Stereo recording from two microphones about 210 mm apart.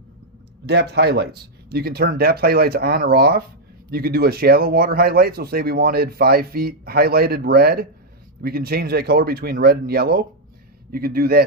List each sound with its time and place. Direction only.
0.7 s speech: 50° right (ahead or behind)